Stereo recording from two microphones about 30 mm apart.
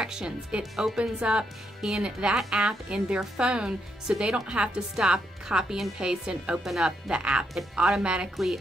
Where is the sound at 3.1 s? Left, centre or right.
Right.